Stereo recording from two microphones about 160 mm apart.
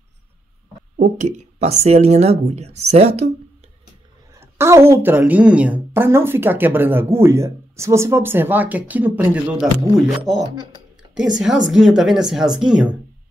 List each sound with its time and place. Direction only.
0.9 s speech: 50° right (ahead or behind)
4.3 s a woman's voice: 15° right (ahead or behind)
10.4 s speech: 25° right (ahead or behind)
11.1 s a woman's voice: 5° right (ahead or behind)